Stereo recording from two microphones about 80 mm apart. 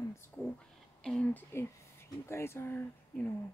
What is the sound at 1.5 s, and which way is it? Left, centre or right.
Speech, left.